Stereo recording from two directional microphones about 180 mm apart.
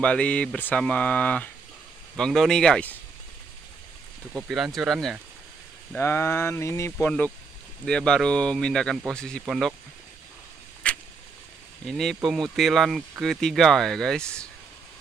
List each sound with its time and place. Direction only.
0.0 s speech: 5° left (ahead or behind)
4.3 s speech: 5° right (ahead or behind)
5.9 s speech: 15° left (ahead or behind)
10.8 s a sound: 5° left (ahead or behind)
11.8 s speech: centre (ahead or behind)